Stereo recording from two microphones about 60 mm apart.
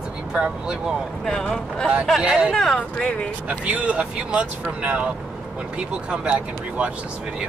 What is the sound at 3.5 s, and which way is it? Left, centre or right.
Speech, right.